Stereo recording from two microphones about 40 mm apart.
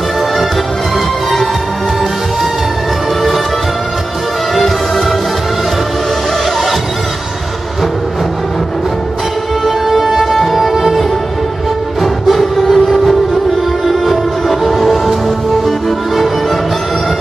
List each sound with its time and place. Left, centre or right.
4.6 s music: centre
9.7 s music: centre